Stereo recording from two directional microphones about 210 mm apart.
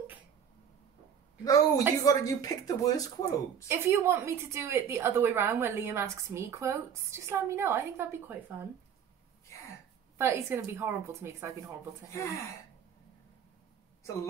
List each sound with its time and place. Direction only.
1.4 s speech: 15° left (ahead or behind)
3.6 s a woman's voice: 10° right (ahead or behind)
10.1 s a woman's voice: 15° right (ahead or behind)
12.1 s speech: 15° left (ahead or behind)